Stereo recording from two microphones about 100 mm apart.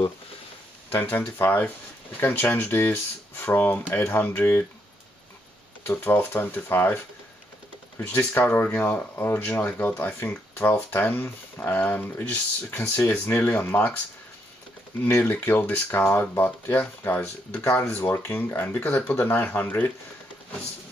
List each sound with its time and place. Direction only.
0.9 s speech: 20° left (ahead or behind)
5.9 s speech: 20° left (ahead or behind)
8.0 s speech: 20° left (ahead or behind)
15.0 s speech: 20° left (ahead or behind)